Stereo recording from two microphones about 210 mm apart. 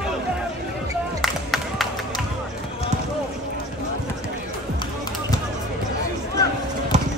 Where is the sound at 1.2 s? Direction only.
Centre (ahead or behind).